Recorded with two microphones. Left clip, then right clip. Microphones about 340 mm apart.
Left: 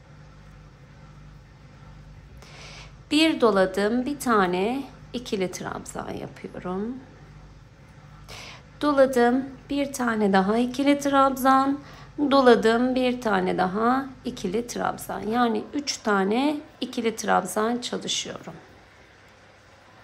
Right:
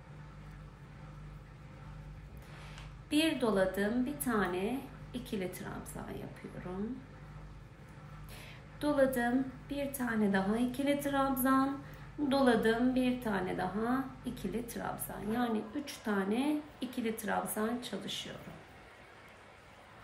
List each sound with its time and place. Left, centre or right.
2.6 s a woman's voice: centre
8.3 s a woman's voice: centre